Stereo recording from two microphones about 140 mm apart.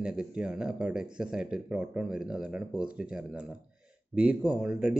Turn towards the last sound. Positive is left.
turn(degrees=-5)  # may be behind; listen again after turning